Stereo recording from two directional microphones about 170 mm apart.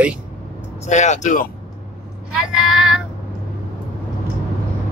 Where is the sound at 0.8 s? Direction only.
45° left (ahead or behind).